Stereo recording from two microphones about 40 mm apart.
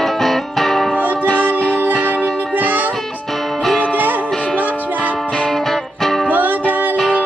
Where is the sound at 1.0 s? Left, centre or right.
Right.